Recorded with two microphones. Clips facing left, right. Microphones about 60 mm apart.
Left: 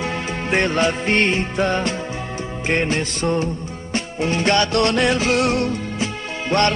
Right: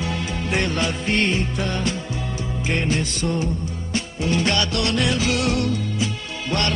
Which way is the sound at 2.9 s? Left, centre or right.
Left.